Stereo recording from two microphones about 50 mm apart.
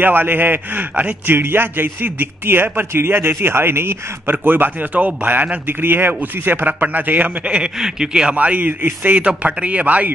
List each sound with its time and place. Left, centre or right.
0.0 s a man's voice: right
7.5 s a man's voice: centre
8.4 s speech: right